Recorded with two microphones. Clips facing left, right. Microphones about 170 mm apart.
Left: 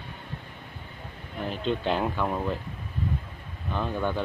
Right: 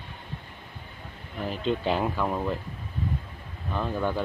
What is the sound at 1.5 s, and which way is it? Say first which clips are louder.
Speech: right 1 dB; 5° right (ahead or behind).